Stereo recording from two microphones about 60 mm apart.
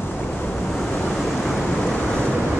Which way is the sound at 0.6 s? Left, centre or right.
Centre.